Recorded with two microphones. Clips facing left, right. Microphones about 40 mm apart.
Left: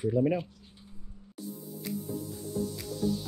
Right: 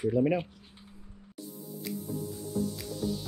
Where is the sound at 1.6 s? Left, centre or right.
Centre.